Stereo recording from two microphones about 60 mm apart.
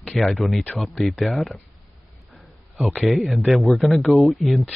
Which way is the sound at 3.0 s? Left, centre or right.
Centre.